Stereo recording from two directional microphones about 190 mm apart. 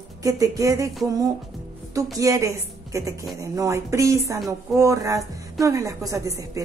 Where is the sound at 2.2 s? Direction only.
15° right (ahead or behind).